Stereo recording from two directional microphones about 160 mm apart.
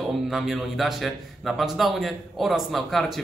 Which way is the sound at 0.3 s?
Centre (ahead or behind).